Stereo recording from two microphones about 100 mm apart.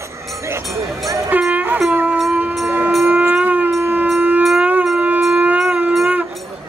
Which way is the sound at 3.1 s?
15° right (ahead or behind).